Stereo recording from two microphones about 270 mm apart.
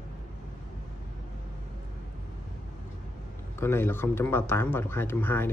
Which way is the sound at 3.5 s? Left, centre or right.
Centre.